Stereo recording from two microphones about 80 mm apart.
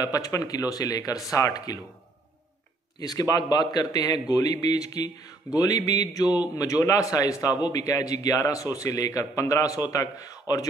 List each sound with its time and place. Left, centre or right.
0.0 s a man's voice: left
3.0 s a man's voice: left